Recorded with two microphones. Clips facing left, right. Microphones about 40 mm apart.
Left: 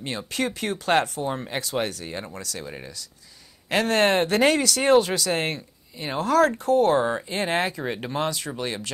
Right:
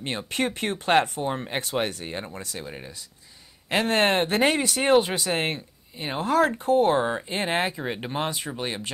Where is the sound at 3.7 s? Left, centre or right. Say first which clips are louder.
Left 1 dB; right.